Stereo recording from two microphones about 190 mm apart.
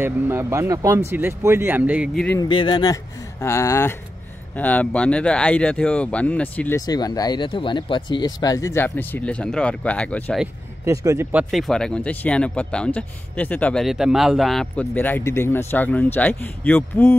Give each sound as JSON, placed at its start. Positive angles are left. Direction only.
{"t": 0.0, "sound": "speech", "side_deg": -15}
{"t": 2.1, "sound": "speech", "side_deg": 10}
{"t": 2.4, "sound": "speech", "side_deg": 25}
{"t": 6.9, "sound": "speech", "side_deg": 20}
{"t": 10.9, "sound": "speech", "side_deg": -15}
{"t": 11.5, "sound": "speech", "side_deg": 0}